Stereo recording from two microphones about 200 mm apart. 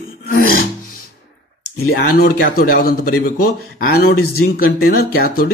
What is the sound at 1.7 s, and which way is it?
Speech, 50° left (ahead or behind).